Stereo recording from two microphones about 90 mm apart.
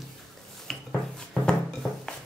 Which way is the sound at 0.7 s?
5° left (ahead or behind).